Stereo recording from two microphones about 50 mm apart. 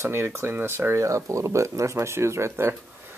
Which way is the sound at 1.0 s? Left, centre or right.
Right.